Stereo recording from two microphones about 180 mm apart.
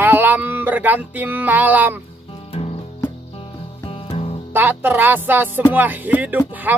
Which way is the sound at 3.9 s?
30° left (ahead or behind).